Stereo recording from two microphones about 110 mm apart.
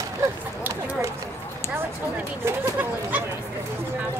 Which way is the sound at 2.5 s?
15° right (ahead or behind).